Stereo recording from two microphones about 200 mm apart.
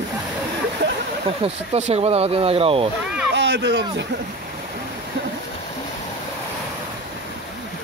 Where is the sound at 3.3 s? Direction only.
65° right (ahead or behind).